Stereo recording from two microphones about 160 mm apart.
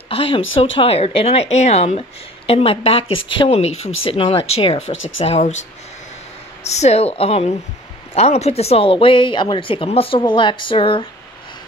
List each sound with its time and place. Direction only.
0.1 s speech: 35° left (ahead or behind)
6.7 s speech: 40° left (ahead or behind)